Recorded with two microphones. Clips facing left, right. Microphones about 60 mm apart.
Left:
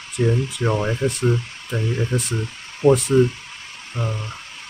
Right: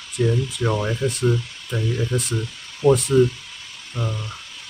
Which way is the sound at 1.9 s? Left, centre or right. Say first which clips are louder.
Even; left.